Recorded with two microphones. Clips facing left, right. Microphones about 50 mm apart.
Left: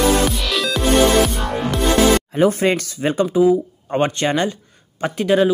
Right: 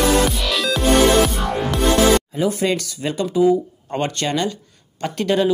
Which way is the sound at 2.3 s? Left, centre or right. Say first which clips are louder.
Left 4 dB; left.